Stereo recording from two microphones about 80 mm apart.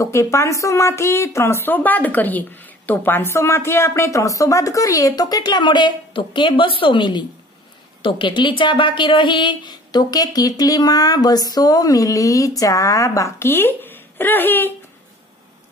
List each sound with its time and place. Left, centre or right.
0.0 s a woman's voice: left
1.7 s a woman's voice: left
8.0 s a woman's voice: left